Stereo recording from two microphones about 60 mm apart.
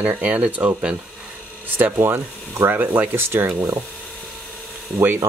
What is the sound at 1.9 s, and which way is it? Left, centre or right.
Speech, right.